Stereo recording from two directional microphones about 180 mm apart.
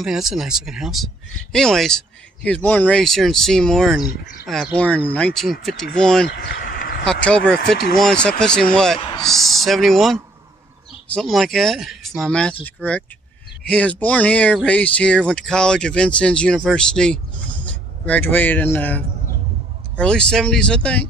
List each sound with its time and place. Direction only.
0.0 s speech: centre (ahead or behind)
6.2 s a sound: 60° left (ahead or behind)
7.1 s speech: 5° left (ahead or behind)
11.1 s speech: centre (ahead or behind)